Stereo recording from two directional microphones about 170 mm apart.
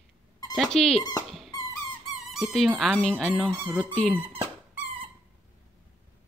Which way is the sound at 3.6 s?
10° right (ahead or behind).